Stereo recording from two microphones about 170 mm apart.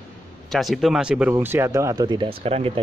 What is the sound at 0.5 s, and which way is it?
Speech, centre (ahead or behind).